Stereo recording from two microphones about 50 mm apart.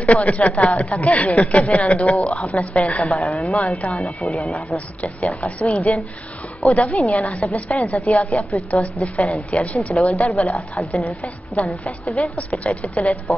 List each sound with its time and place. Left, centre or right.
0.0 s a woman's voice: left
4.4 s a woman's voice: centre
4.7 s a woman's voice: left
10.5 s a woman's voice: centre
11.8 s a woman's voice: left